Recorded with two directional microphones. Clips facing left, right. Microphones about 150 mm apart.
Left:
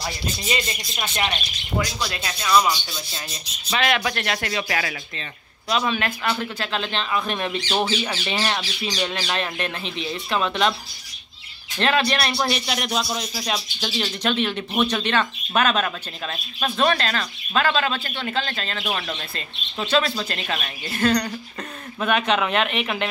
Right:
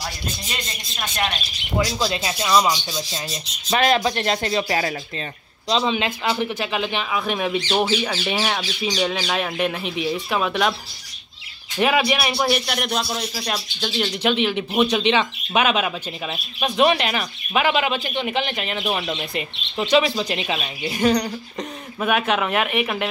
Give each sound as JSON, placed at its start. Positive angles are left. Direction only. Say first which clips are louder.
{"t": 0.5, "sound": "speech", "louder": "left 6 dB", "side_deg": 10}
{"t": 2.0, "sound": "speech", "louder": "right 6 dB", "side_deg": -25}
{"t": 3.7, "sound": "speech", "louder": "right 4 dB", "side_deg": -40}
{"t": 4.0, "sound": "speech", "louder": "right 4 dB", "side_deg": -25}
{"t": 5.9, "sound": "speech", "louder": "right 3 dB", "side_deg": -15}
{"t": 11.8, "sound": "a man's voice", "louder": "right 2 dB", "side_deg": -10}
{"t": 14.2, "sound": "a man's voice", "louder": "right 3 dB", "side_deg": -10}